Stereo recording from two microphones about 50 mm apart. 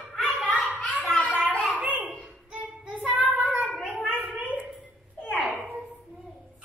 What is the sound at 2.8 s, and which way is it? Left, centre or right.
Child singing, right.